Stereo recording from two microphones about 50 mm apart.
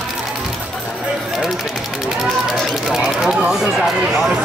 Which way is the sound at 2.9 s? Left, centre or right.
Centre.